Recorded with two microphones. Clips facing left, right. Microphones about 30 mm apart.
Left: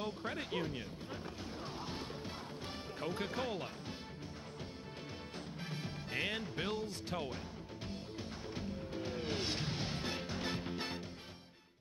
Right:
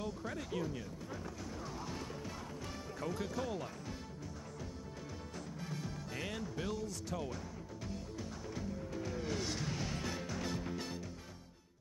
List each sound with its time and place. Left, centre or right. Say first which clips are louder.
0.0 s music: left 1 dB; left
3.0 s speech: left 1 dB; left
5.6 s music: even; left